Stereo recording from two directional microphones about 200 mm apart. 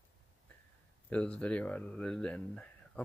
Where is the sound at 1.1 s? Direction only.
5° left (ahead or behind).